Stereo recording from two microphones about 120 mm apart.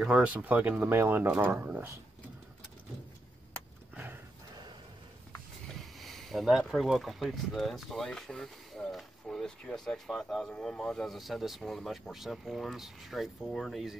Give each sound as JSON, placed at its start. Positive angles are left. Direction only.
{"t": 0.0, "sound": "speech", "side_deg": -10}
{"t": 3.9, "sound": "horse", "side_deg": -15}
{"t": 5.9, "sound": "speech", "side_deg": 0}